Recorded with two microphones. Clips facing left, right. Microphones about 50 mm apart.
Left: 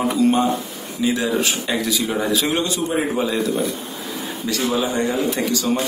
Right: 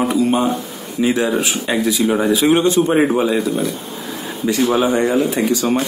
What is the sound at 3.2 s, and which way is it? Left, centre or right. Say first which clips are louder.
Speech: right 3 dB; centre.